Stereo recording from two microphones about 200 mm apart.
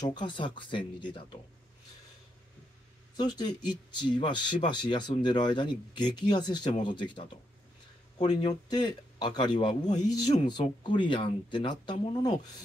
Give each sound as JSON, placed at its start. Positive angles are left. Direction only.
{"t": 0.0, "sound": "speech", "side_deg": 20}
{"t": 3.2, "sound": "speech", "side_deg": 20}